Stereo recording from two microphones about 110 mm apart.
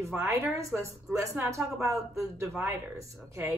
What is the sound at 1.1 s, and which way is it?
Speech, 15° right (ahead or behind).